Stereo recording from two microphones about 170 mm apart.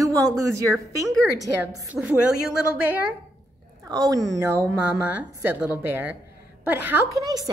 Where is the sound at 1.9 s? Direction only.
5° right (ahead or behind).